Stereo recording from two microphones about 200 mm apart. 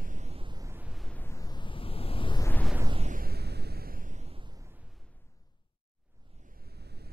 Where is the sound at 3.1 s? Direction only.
50° right (ahead or behind); by 4.6 s 25° right (ahead or behind).